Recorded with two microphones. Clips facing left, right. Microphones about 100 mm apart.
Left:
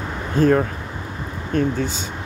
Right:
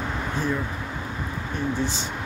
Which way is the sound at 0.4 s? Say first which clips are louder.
Left 12 dB; 60° left (ahead or behind).